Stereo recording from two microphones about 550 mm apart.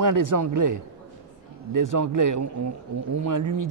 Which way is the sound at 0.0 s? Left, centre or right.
Right.